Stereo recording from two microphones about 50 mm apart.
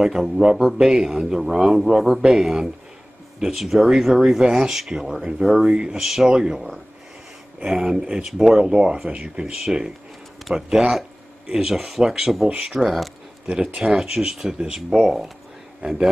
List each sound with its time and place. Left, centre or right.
0.0 s speech: centre
12.8 s speech: centre
13.5 s speech: centre